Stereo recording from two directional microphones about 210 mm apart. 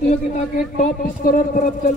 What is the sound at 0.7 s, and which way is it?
Speech, 45° left (ahead or behind).